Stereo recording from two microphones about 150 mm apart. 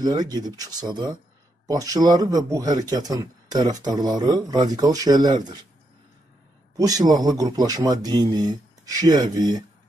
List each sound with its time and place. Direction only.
0.0 s speech: 25° right (ahead or behind)
6.8 s speech: 25° right (ahead or behind)